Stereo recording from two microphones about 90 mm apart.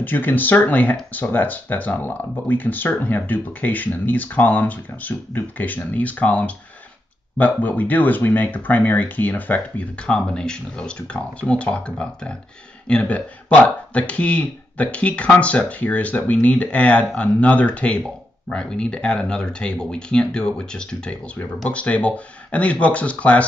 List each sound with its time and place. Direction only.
0.0 s speech: 20° left (ahead or behind)